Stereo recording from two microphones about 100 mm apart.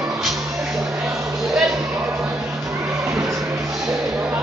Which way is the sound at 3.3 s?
35° right (ahead or behind).